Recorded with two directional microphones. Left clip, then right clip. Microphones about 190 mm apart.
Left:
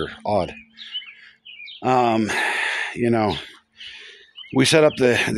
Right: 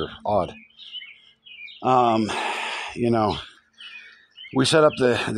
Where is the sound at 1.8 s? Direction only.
15° left (ahead or behind).